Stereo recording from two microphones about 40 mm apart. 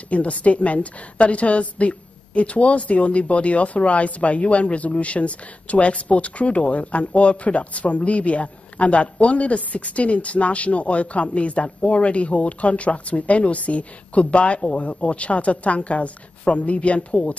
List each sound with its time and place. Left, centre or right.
0.1 s a woman's voice: left